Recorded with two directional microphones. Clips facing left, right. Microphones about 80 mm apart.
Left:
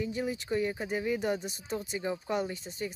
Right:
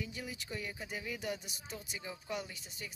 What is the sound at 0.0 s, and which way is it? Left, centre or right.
Speech, left.